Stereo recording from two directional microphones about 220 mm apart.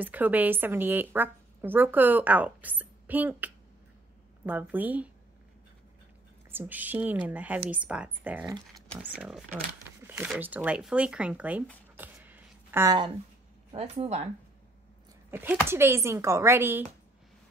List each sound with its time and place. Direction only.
0.0 s a woman's voice: 5° right (ahead or behind)
6.5 s a woman's voice: 10° right (ahead or behind)
10.0 s a sound: 10° right (ahead or behind)
10.3 s speech: 5° right (ahead or behind)
12.0 s a sound: 10° right (ahead or behind)
13.7 s speech: 25° right (ahead or behind)
15.3 s a woman's voice: 10° right (ahead or behind)